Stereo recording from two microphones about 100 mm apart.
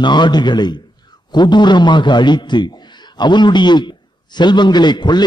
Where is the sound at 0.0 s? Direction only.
50° left (ahead or behind).